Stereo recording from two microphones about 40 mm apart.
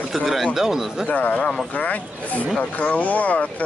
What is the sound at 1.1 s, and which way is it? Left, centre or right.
Speech, left.